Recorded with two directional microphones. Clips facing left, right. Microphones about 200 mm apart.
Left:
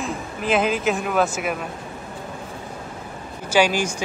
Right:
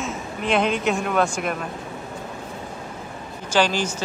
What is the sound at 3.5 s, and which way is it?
Speech, 10° left (ahead or behind).